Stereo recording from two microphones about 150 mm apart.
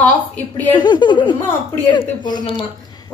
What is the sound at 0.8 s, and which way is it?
A woman's voice, 30° left (ahead or behind).